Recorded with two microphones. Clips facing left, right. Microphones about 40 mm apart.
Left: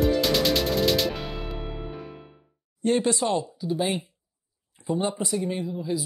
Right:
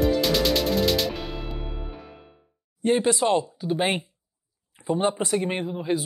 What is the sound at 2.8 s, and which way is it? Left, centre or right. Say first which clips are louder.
Speech: right 2 dB; right.